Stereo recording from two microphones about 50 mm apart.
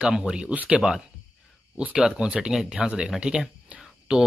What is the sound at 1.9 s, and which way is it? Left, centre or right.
Speech, centre.